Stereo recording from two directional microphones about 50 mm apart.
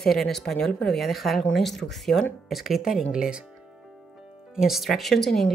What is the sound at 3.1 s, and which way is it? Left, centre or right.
Speech, centre.